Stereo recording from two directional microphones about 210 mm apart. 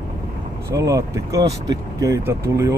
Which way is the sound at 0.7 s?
15° right (ahead or behind).